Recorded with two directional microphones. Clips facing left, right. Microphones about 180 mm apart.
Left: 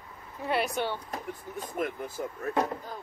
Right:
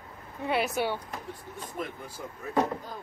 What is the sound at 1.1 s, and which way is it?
Speech, 45° left (ahead or behind).